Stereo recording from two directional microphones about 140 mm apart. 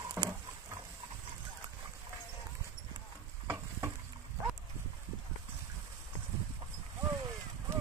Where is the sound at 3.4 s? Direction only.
15° right (ahead or behind).